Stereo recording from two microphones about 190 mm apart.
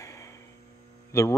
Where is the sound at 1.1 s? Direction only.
15° left (ahead or behind).